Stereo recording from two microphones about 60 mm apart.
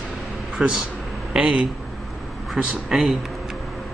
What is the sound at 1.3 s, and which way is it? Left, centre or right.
Speech, centre.